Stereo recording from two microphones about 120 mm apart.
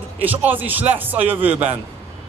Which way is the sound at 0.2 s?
15° right (ahead or behind).